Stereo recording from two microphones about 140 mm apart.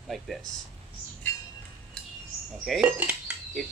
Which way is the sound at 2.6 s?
Centre (ahead or behind).